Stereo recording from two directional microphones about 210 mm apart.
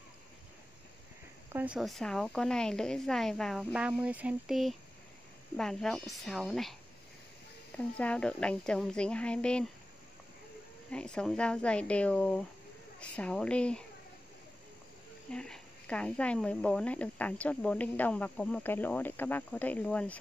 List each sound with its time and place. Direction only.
1.5 s speech: 5° right (ahead or behind)
10.9 s speech: 5° left (ahead or behind)
15.3 s speech: 5° left (ahead or behind)